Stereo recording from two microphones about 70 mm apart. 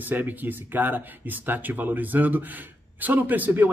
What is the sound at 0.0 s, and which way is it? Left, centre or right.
Speech, right.